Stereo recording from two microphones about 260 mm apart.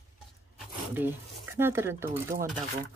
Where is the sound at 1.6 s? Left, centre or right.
Centre.